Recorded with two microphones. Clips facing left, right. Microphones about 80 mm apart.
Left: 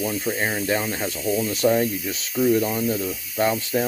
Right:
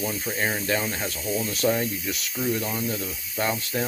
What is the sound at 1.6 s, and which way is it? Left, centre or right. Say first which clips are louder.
Speech: left 5 dB; centre.